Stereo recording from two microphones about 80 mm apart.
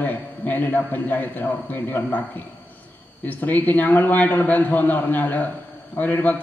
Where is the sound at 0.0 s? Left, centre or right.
Left.